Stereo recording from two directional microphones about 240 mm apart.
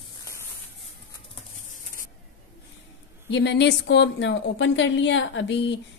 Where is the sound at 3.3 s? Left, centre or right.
Left.